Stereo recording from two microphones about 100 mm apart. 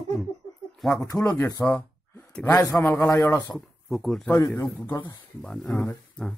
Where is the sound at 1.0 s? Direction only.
35° left (ahead or behind).